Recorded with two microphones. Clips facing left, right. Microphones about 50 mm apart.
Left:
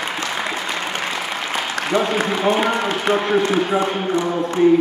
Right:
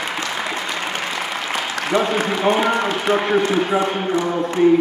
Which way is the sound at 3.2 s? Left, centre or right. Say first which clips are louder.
Even; right.